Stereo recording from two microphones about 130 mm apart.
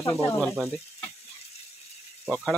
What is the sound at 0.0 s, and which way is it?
Speech, 20° left (ahead or behind).